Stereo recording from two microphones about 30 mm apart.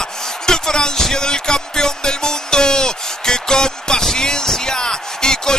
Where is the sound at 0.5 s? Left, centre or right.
Left.